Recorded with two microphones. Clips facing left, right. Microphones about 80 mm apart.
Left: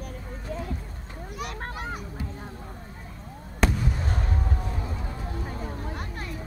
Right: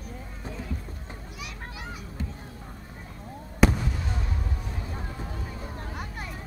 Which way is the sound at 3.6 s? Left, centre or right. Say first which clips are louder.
Right 4 dB; centre.